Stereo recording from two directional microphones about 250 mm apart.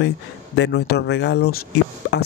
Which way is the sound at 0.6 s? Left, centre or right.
Left.